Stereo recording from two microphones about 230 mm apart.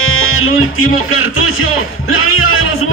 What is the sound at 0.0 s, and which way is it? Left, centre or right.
Speech, left.